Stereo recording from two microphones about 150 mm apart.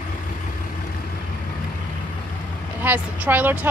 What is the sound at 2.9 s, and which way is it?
Speech, 10° right (ahead or behind).